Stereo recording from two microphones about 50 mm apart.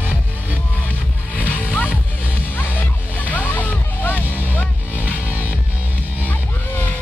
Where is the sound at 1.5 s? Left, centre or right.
Left.